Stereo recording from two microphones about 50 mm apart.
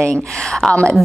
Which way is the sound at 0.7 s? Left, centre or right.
Left.